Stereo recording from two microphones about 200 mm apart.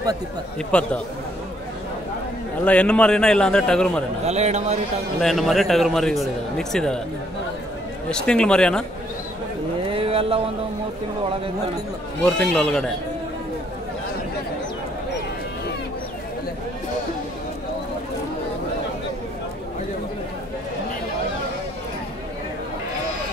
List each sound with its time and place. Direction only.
0.6 s speech: 5° left (ahead or behind)
2.6 s speech: 5° left (ahead or behind)
4.3 s a man's voice: 35° right (ahead or behind)
5.2 s speech: centre (ahead or behind)
8.1 s speech: 5° left (ahead or behind)
9.8 s a sound: 25° right (ahead or behind)
12.2 s speech: 5° left (ahead or behind)